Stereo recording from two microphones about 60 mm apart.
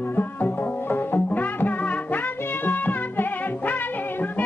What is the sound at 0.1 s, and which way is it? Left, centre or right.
Music, left.